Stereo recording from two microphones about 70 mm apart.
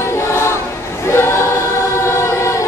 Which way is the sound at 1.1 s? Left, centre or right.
Left.